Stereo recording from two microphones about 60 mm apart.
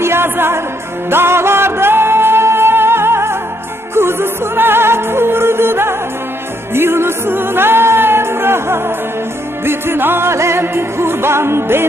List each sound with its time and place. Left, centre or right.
0.0 s music: right